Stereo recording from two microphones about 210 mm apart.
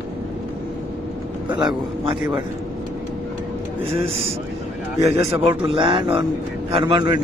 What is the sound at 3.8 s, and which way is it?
Speech, 30° right (ahead or behind).